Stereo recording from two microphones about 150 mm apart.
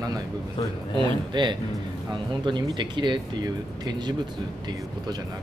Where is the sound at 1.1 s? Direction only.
30° right (ahead or behind).